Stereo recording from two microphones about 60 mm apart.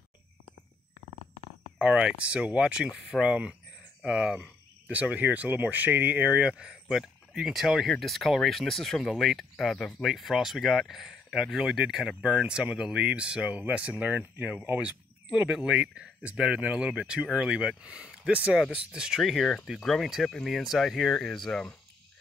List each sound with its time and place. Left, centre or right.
1.8 s speech: centre
4.0 s cricket: centre
4.9 s speech: right; by 21.7 s centre